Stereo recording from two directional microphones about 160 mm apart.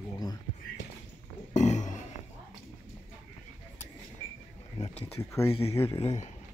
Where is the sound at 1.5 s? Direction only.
50° left (ahead or behind).